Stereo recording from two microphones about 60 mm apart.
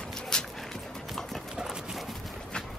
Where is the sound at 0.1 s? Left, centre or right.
Centre.